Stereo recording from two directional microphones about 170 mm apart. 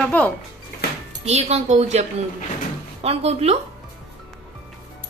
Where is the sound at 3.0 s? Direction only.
35° right (ahead or behind).